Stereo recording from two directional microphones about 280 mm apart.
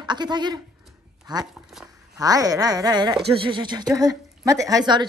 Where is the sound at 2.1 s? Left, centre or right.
Centre.